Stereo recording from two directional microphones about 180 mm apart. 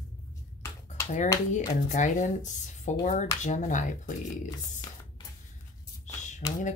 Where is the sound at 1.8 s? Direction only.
45° left (ahead or behind).